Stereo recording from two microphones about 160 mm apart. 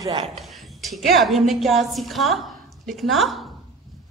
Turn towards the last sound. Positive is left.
turn(degrees=0)  # may be behind; listen again after turning